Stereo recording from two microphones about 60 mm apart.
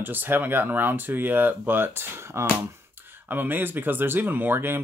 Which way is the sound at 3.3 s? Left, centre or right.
Right.